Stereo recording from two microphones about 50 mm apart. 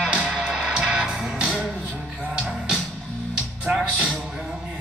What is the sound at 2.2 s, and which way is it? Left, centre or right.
Music, centre.